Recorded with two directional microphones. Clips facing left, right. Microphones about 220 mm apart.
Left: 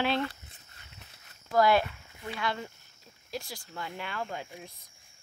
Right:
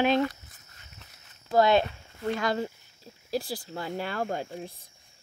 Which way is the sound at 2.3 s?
40° right (ahead or behind).